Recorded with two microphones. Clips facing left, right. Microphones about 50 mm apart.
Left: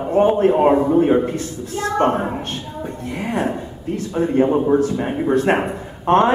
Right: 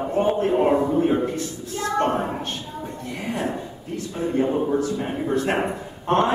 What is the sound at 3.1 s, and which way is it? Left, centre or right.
A man's voice, left.